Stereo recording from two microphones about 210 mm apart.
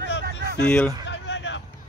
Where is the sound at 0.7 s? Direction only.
5° left (ahead or behind).